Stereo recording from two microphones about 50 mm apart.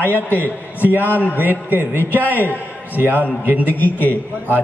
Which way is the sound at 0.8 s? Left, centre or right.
Right.